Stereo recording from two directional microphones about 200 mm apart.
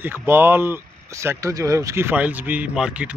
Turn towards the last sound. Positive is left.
turn(degrees=-5)  # may be behind; listen again after turning